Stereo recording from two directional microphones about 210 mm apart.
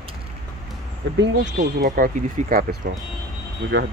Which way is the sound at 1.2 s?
50° right (ahead or behind).